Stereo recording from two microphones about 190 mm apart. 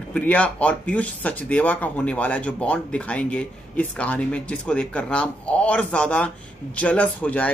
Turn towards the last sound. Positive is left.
turn(degrees=5)  # may be behind; listen again after turning